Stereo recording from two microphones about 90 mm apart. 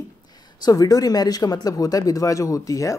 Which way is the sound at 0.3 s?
50° left (ahead or behind).